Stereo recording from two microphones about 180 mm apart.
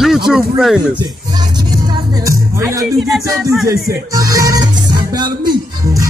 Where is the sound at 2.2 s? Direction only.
15° right (ahead or behind).